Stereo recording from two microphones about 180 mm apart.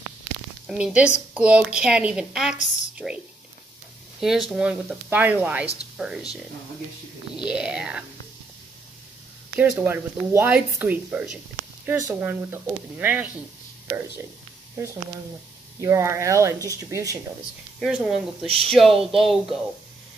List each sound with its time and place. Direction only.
0.7 s speech: 5° right (ahead or behind)
4.2 s speech: centre (ahead or behind)
7.3 s speech: 5° right (ahead or behind)
9.6 s speech: 10° right (ahead or behind)
15.8 s speech: 15° right (ahead or behind)
17.7 s speech: centre (ahead or behind)